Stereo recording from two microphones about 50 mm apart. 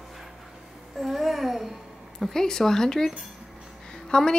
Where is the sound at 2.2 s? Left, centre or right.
Centre.